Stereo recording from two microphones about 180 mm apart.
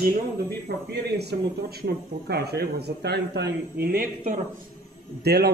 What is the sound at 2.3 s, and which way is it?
Speech, 65° right (ahead or behind).